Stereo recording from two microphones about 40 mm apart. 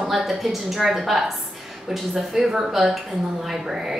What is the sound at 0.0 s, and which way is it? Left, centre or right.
A woman's voice, centre.